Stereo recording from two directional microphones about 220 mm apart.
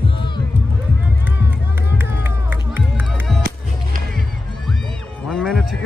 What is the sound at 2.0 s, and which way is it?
Run, 10° right (ahead or behind).